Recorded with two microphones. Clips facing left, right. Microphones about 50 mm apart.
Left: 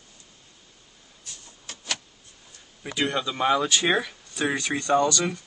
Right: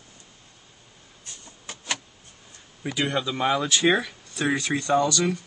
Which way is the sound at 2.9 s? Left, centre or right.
Centre.